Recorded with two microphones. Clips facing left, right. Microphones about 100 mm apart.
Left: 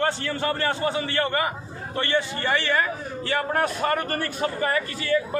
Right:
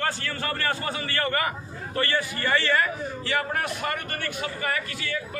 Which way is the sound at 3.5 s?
35° left (ahead or behind).